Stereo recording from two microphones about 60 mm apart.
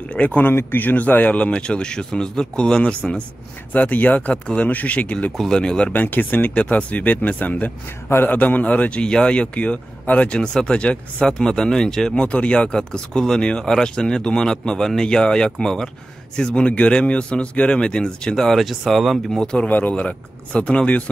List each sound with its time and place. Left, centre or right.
0.1 s speech: left
0.5 s speech: left; by 5.9 s centre
5.9 s speech: left; by 19.4 s centre
19.4 s speech: centre
19.7 s speech: left